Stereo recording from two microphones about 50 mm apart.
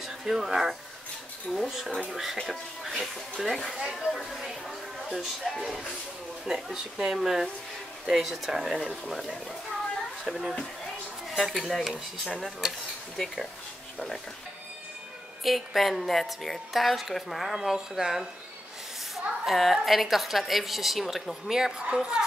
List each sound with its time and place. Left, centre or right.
0.0 s a woman's voice: centre
6.4 s a woman's voice: centre
15.4 s a woman's voice: centre
21.5 s speech: centre